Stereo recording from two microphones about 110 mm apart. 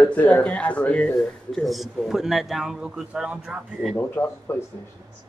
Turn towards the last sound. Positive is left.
turn(degrees=20)  # may be behind; listen again after turning